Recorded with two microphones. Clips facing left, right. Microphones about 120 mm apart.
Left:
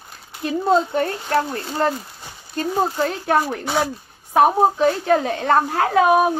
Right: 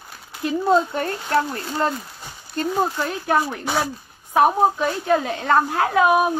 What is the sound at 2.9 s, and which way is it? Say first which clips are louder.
Speech: left 2 dB; 50° left (ahead or behind).